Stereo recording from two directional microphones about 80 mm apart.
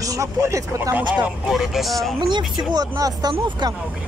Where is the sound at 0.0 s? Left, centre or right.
Right.